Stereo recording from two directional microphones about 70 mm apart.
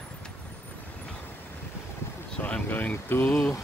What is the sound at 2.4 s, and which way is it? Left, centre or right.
Speech, left.